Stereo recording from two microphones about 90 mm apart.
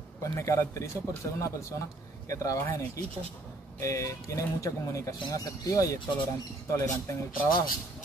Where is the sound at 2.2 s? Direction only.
35° left (ahead or behind).